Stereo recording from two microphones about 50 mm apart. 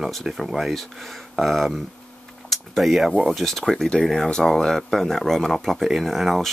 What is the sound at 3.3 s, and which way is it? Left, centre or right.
Speech, centre.